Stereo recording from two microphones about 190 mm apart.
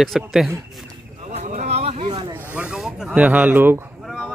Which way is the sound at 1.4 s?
40° right (ahead or behind).